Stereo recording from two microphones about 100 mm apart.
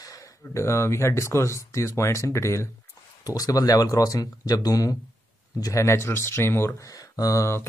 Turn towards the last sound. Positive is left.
turn(degrees=30)  # may be behind; listen again after turning